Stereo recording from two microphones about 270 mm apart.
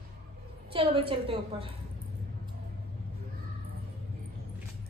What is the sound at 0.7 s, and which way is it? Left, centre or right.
Speech, centre.